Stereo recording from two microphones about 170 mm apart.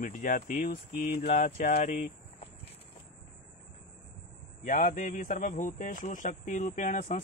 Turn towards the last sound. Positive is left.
turn(degrees=45)  # may be behind; listen again after turning